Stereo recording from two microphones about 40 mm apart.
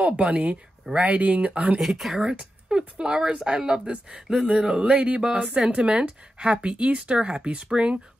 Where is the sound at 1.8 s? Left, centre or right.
Centre.